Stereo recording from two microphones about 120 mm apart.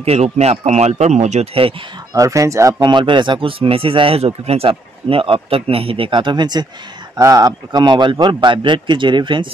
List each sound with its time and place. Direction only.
0.0 s speech: 60° right (ahead or behind)
2.1 s speech: 25° right (ahead or behind)
2.8 s a man's voice: 40° right (ahead or behind)